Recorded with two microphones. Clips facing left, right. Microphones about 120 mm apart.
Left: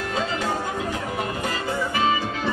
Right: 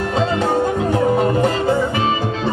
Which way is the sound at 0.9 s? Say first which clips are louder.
Right 12 dB; 35° right (ahead or behind).